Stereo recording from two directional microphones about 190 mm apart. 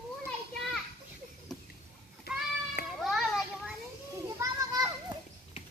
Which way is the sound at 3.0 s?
Centre (ahead or behind).